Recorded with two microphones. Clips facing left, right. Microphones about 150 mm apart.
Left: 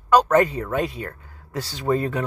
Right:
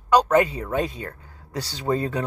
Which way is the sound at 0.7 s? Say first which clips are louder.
Left 1 dB; 30° right (ahead or behind).